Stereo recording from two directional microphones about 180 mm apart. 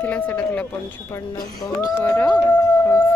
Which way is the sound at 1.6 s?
20° left (ahead or behind).